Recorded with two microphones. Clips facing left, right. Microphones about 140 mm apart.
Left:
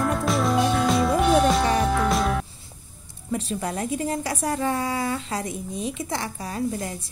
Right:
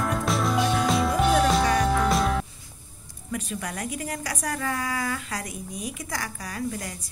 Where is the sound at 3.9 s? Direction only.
25° left (ahead or behind).